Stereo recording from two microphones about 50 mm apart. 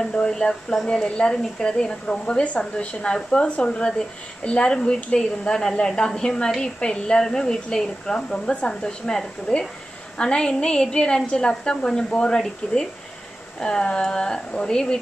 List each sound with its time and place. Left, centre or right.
0.0 s a woman's voice: centre